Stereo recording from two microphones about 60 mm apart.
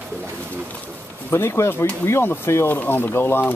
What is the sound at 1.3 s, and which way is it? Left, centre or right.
Speech, left.